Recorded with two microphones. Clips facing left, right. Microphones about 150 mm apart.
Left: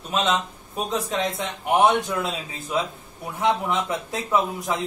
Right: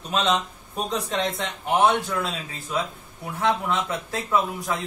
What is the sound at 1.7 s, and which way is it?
A man's voice, 20° left (ahead or behind).